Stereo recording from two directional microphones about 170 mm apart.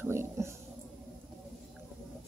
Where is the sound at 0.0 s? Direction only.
15° right (ahead or behind).